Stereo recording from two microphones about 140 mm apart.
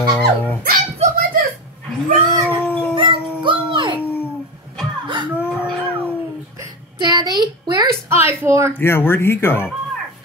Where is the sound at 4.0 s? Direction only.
15° left (ahead or behind).